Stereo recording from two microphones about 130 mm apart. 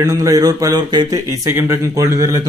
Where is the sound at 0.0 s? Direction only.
25° right (ahead or behind).